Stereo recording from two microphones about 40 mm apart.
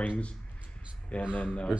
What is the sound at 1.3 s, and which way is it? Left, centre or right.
Speech, left.